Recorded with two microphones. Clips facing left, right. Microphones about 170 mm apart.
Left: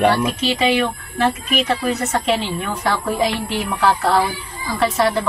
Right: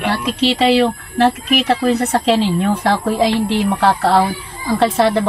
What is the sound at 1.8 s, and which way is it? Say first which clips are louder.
A woman's voice: right 5 dB; 35° right (ahead or behind).